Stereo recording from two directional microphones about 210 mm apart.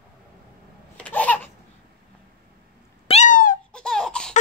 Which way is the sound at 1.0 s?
5° left (ahead or behind).